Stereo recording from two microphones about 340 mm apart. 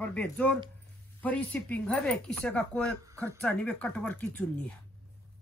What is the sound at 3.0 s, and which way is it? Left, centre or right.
Speech, centre.